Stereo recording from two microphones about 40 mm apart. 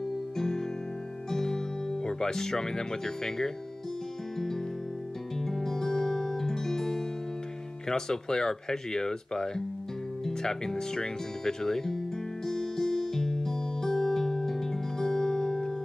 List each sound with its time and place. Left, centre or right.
0.4 s music: centre
5.4 s music: centre
7.9 s speech: centre
12.4 s music: centre